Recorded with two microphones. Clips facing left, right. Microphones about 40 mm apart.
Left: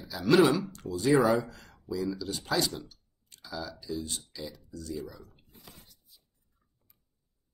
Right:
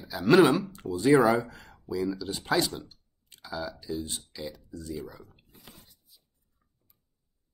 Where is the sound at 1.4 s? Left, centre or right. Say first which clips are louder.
Right 1 dB; right.